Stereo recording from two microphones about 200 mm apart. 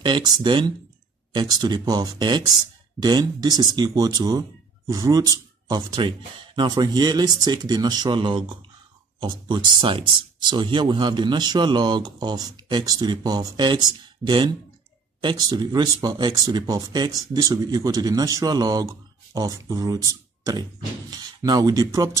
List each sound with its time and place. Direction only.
0.0 s speech: 20° right (ahead or behind)